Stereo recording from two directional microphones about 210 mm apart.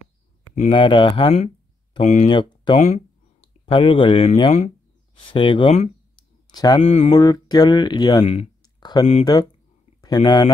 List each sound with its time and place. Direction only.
0.7 s speech: 25° left (ahead or behind)
6.8 s speech: 30° left (ahead or behind)
7.2 s speech: 20° left (ahead or behind)